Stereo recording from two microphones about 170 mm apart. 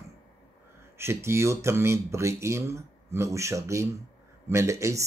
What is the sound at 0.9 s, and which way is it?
Speech, 15° right (ahead or behind).